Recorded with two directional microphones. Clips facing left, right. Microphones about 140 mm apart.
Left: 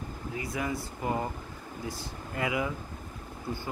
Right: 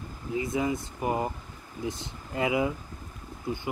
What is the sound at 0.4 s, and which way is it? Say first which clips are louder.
Speech: right 5 dB; 20° right (ahead or behind).